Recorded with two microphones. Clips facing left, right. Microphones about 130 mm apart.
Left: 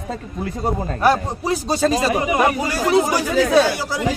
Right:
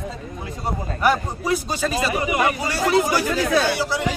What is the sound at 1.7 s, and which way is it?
Speech, 35° left (ahead or behind).